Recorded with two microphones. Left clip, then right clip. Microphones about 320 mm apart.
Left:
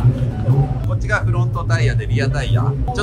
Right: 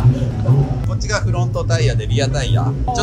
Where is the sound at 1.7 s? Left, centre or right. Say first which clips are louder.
Even; centre.